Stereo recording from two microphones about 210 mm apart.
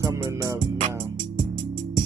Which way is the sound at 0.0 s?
15° right (ahead or behind).